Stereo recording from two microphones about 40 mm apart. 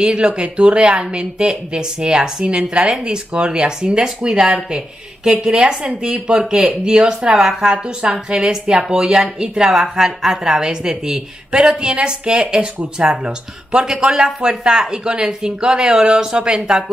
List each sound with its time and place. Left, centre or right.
0.0 s speech: right
7.7 s a woman's voice: right
13.8 s speech: centre